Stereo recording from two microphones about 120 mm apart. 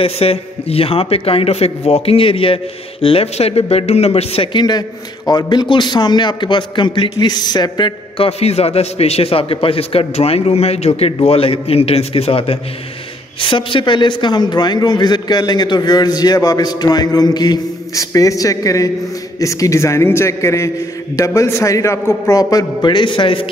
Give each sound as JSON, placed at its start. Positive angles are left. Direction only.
{"t": 0.0, "sound": "a man's voice", "side_deg": 55}
{"t": 8.3, "sound": "a man's voice", "side_deg": 60}
{"t": 13.4, "sound": "a man's voice", "side_deg": 45}